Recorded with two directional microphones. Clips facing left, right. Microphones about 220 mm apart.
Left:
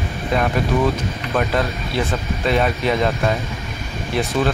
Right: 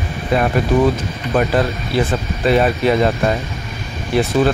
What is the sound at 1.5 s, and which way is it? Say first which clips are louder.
Speech: right 4 dB; centre (ahead or behind).